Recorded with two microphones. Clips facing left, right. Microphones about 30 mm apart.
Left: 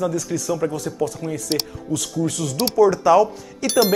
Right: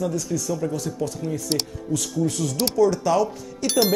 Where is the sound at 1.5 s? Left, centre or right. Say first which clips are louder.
Left 2 dB; centre.